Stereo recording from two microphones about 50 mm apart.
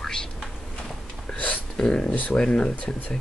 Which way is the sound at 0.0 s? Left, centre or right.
Centre.